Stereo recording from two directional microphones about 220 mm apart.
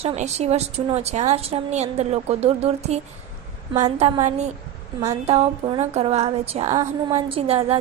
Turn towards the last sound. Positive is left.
turn(degrees=-25)  # may be behind; listen again after turning